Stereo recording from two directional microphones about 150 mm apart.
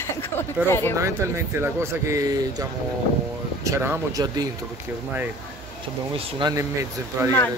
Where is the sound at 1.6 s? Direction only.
20° right (ahead or behind).